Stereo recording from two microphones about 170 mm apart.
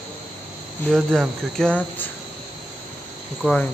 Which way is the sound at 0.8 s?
Centre (ahead or behind).